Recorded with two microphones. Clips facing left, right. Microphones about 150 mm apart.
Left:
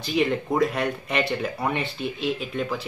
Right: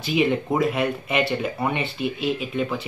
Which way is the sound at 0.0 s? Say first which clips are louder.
Right 2 dB; centre (ahead or behind).